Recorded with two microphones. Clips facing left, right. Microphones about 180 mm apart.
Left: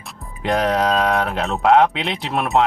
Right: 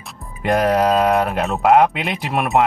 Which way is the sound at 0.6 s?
10° right (ahead or behind).